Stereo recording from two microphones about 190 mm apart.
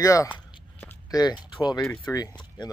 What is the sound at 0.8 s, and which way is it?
Speech, 20° left (ahead or behind).